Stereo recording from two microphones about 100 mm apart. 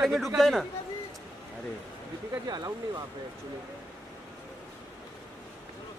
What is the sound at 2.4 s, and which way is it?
Speech, 45° right (ahead or behind).